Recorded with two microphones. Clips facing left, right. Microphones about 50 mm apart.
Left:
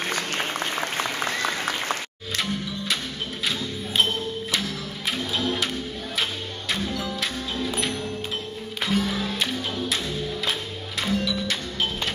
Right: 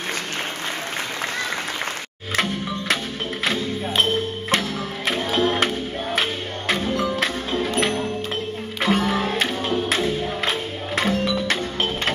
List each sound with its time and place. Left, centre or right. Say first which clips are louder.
4.5 s music: right 5 dB; right
6.7 s music: right 6 dB; right
8.8 s music: right 5 dB; right